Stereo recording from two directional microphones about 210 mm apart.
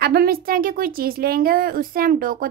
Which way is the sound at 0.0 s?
45° right (ahead or behind).